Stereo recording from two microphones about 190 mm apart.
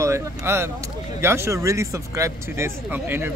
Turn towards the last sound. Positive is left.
turn(degrees=-10)  # may be behind; listen again after turning